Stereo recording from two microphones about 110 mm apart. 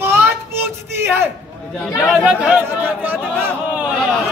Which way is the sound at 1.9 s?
5° right (ahead or behind).